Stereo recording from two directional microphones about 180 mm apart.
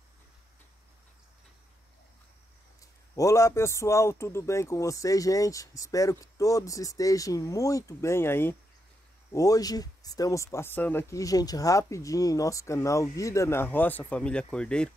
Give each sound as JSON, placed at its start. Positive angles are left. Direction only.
{"t": 3.2, "sound": "speech", "side_deg": 15}